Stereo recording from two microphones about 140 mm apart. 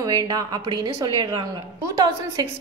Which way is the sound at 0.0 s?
25° right (ahead or behind).